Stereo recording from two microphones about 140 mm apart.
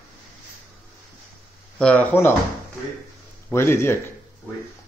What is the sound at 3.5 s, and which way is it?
Speech, 15° left (ahead or behind).